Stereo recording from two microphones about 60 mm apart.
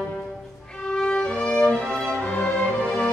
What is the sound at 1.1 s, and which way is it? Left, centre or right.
Music, centre.